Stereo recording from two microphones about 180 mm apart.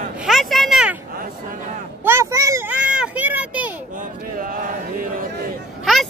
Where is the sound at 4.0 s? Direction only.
50° right (ahead or behind).